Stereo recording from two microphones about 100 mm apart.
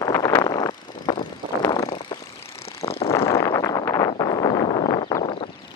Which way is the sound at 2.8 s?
90° left.